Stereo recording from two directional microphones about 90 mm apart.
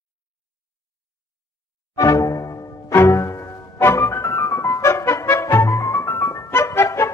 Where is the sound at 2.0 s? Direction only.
40° left (ahead or behind).